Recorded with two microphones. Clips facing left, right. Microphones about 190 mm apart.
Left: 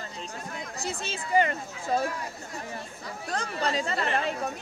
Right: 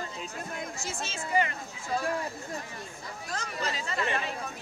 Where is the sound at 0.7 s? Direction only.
35° left (ahead or behind).